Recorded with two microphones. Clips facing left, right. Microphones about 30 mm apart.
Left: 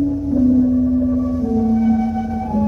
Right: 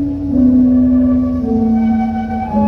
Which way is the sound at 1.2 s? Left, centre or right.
Right.